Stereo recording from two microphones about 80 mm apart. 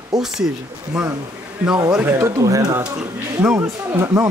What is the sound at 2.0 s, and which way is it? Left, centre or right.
Speech, right.